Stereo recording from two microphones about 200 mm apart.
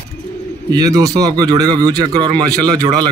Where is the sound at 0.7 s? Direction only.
20° right (ahead or behind).